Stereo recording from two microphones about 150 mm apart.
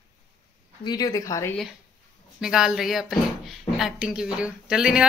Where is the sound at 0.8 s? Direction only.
25° left (ahead or behind).